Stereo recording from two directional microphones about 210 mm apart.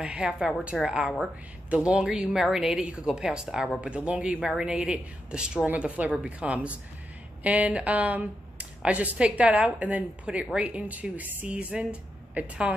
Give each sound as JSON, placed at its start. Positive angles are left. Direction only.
{"t": 0.0, "sound": "a woman's voice", "side_deg": -5}